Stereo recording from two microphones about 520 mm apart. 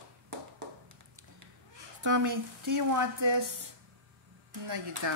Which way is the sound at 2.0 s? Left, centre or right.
Right.